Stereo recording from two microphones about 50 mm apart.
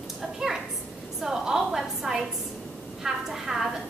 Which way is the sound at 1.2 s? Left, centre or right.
Centre.